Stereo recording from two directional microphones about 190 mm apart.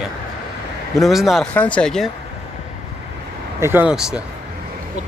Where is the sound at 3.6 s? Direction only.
10° right (ahead or behind).